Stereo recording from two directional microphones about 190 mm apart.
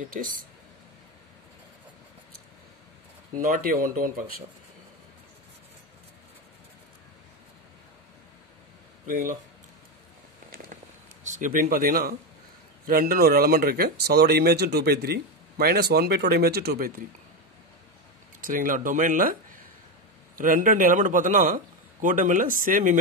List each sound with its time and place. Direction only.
0.0 s a man's voice: 45° right (ahead or behind)
3.3 s a man's voice: 45° right (ahead or behind)
9.0 s speech: 45° right (ahead or behind)
11.2 s a man's voice: 40° right (ahead or behind)
18.4 s a man's voice: 45° right (ahead or behind)